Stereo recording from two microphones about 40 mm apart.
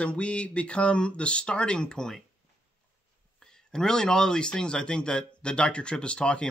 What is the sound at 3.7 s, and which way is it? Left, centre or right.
Speech, centre.